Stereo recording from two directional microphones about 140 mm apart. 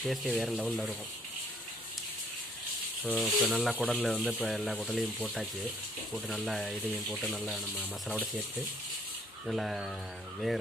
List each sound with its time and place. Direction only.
0.0 s speech: centre (ahead or behind)
3.0 s speech: centre (ahead or behind)
9.5 s speech: centre (ahead or behind)